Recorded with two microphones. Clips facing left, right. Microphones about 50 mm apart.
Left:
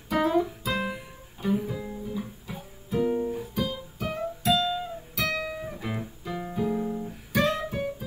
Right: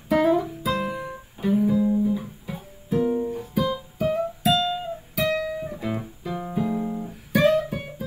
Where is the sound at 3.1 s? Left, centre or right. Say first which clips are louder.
Right 2 dB; centre.